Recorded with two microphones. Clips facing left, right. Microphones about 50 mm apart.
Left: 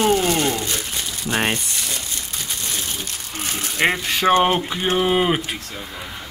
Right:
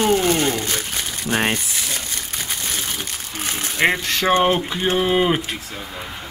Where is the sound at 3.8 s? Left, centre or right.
Centre.